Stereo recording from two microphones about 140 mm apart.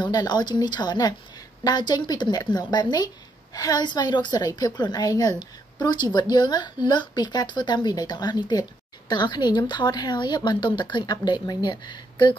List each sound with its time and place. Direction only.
0.0 s a woman's voice: 30° left (ahead or behind)